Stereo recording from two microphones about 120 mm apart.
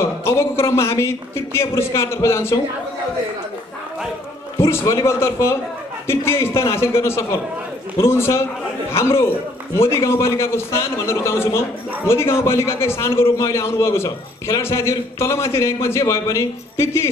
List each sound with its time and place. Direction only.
0.0 s a man's voice: 20° left (ahead or behind)
4.6 s a man's voice: 20° left (ahead or behind)